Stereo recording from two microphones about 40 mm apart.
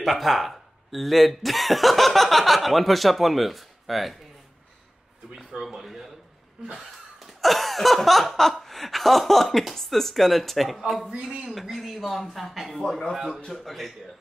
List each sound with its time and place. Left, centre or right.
0.0 s speech: centre
5.8 s a sound: centre
11.1 s speech: right
11.5 s speech: centre